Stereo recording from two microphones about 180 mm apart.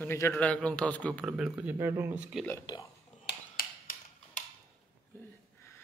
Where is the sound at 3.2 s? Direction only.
55° left (ahead or behind).